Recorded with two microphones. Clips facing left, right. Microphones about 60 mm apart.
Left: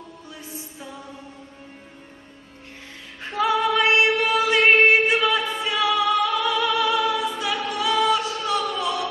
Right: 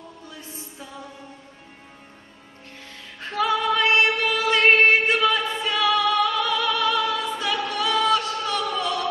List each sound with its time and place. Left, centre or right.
3.3 s female singing: centre
4.7 s music: centre